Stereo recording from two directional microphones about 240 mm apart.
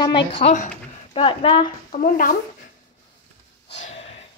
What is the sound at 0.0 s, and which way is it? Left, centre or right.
Speech, centre.